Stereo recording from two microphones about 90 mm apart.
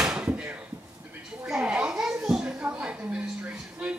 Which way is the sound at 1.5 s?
10° right (ahead or behind).